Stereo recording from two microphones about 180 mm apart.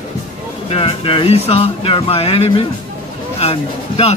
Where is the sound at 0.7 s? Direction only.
30° left (ahead or behind).